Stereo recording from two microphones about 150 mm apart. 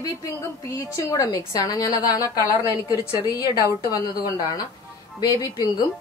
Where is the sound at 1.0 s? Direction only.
20° left (ahead or behind).